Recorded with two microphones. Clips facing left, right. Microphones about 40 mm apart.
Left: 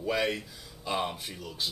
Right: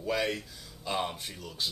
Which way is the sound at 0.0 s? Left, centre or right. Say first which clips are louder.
Left 1 dB; centre.